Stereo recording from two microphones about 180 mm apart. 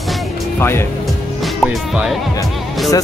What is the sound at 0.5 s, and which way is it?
Speech, 15° left (ahead or behind).